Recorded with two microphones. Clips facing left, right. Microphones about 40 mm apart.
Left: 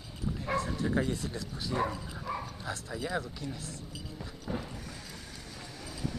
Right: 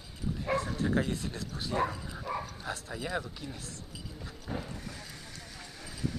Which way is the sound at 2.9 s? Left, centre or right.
Centre.